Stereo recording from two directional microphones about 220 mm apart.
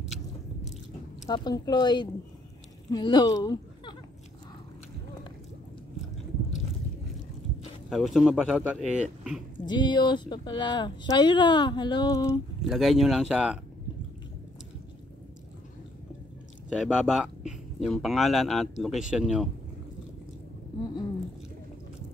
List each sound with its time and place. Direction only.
1.2 s speech: 20° left (ahead or behind)
7.9 s speech: centre (ahead or behind)
9.7 s speech: 20° left (ahead or behind)
12.6 s speech: centre (ahead or behind)
16.6 s speech: centre (ahead or behind)